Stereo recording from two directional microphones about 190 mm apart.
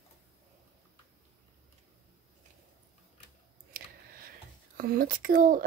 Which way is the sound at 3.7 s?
50° right (ahead or behind).